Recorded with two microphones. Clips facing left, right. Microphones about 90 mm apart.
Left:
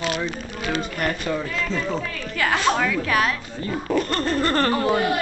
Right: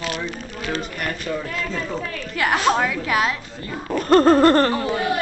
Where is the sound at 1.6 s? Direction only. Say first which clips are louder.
Left 1 dB; 5° right (ahead or behind).